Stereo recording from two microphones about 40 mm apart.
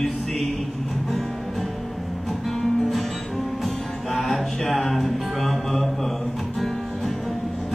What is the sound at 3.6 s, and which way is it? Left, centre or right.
Music, centre.